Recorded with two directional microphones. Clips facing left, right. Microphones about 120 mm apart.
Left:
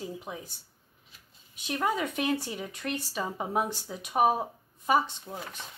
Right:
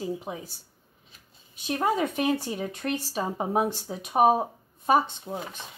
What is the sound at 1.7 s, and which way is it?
Speech, 30° right (ahead or behind).